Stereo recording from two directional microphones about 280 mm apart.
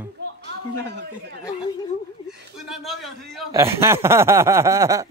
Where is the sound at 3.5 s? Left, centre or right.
Centre.